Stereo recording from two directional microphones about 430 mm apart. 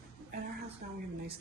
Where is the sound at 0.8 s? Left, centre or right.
Right.